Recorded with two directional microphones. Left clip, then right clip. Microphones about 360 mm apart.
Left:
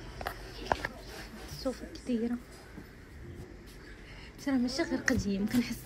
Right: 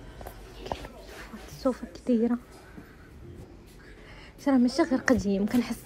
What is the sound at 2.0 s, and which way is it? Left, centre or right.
Speech, right.